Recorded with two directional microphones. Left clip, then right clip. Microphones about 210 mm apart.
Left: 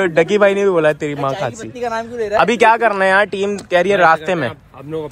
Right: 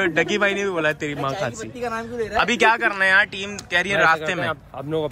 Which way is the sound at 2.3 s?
5° right (ahead or behind).